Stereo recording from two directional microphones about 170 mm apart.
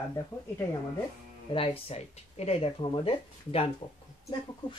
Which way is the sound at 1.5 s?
35° left (ahead or behind).